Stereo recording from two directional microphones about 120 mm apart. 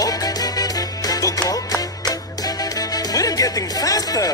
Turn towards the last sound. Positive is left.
turn(degrees=30)  # may be behind; listen again after turning